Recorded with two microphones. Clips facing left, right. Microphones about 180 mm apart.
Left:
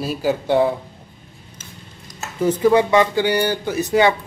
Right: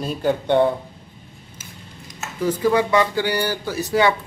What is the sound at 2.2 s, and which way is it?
Speech, 25° left (ahead or behind).